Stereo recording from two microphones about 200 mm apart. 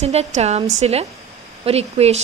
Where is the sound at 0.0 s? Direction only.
35° right (ahead or behind).